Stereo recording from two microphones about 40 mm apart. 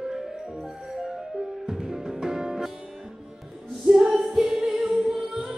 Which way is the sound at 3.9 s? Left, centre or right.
Centre.